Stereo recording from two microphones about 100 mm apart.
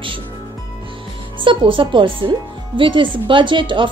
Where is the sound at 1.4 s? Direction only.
55° right (ahead or behind).